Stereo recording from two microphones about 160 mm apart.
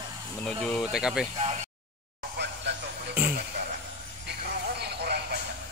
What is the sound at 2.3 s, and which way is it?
Vehicle, 90° right.